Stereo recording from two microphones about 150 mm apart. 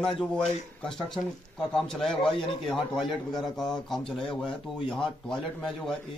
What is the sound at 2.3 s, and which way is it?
Speech, 35° left (ahead or behind).